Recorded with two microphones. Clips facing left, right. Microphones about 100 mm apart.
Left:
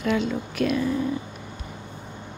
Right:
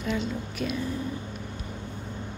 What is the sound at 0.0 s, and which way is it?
Speech, 75° left (ahead or behind).